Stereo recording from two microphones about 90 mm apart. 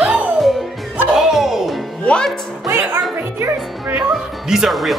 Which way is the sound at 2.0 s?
10° left (ahead or behind).